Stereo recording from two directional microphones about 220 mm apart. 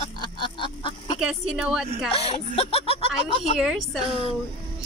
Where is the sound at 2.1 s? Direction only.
25° left (ahead or behind).